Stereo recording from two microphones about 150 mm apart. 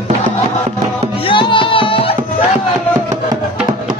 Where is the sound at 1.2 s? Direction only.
35° left (ahead or behind).